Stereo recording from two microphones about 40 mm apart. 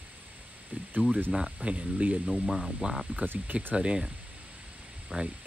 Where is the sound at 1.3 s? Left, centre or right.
Centre.